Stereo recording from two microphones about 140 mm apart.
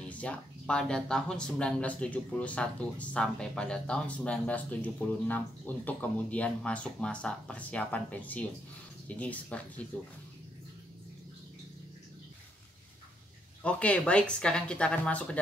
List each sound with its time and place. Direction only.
0.0 s speech: 10° left (ahead or behind)
13.6 s speech: 10° left (ahead or behind)